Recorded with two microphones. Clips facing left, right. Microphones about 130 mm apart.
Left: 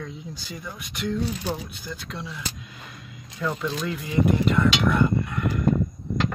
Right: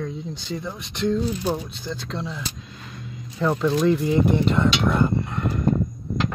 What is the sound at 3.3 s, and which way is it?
Speech, 20° right (ahead or behind).